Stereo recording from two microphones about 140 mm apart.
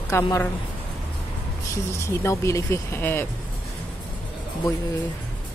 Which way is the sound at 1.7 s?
20° left (ahead or behind).